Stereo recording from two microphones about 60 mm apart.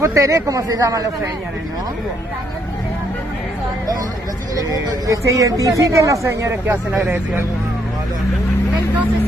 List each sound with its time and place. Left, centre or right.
0.0 s a man's voice: right
4.6 s a woman's voice: right
6.2 s speech: right